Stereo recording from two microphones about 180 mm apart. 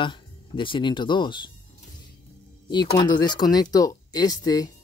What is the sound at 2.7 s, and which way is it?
Speech, 25° left (ahead or behind).